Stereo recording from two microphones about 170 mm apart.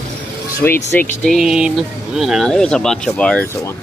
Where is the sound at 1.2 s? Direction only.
Centre (ahead or behind).